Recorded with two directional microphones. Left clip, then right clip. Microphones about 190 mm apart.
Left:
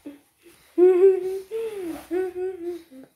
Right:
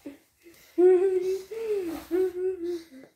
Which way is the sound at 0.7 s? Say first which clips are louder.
Left 3 dB; 35° left (ahead or behind).